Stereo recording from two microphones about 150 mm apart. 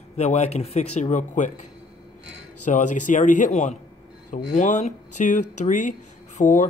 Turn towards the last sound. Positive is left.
turn(degrees=55)  # may be behind; listen again after turning